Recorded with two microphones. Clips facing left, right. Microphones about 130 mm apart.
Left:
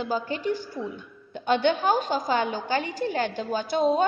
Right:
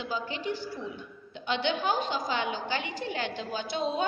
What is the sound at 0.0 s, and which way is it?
A woman's voice, 45° left (ahead or behind).